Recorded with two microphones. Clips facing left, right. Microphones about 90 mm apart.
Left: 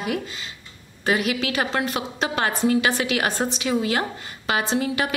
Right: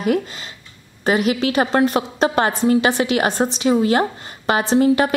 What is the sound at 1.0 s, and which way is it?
A woman's voice, 30° right (ahead or behind).